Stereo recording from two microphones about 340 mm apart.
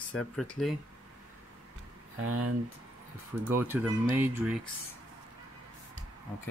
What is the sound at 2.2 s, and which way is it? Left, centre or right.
Speech, right.